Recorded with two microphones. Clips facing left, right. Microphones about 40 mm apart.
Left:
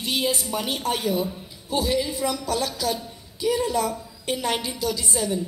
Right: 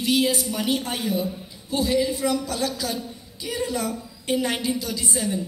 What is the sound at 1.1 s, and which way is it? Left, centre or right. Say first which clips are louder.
A man's voice: left 1 dB; right.